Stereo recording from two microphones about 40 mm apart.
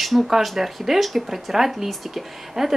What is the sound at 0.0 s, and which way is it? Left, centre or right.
Speech, centre.